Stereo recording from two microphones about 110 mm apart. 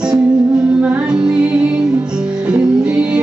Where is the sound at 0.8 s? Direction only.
15° right (ahead or behind).